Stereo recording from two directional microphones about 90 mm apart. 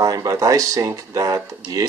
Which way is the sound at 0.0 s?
45° right (ahead or behind).